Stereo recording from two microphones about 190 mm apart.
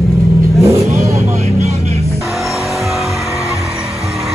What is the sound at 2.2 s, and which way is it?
Vehicle, centre (ahead or behind).